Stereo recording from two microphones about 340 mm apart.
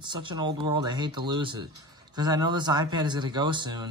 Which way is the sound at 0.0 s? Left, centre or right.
Centre.